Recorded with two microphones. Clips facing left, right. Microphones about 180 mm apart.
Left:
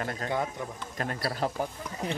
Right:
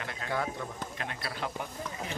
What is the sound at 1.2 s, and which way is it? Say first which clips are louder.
Speech: left 7 dB; 40° left (ahead or behind).